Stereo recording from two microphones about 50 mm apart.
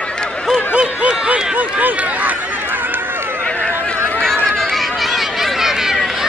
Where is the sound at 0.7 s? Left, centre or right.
Centre.